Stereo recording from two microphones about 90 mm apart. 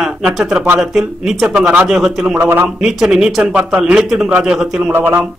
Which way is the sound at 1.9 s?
5° right (ahead or behind).